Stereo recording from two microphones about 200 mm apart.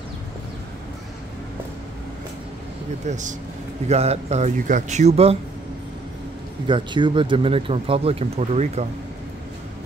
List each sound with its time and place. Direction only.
3.1 s speech: 40° right (ahead or behind)
6.7 s speech: 25° right (ahead or behind)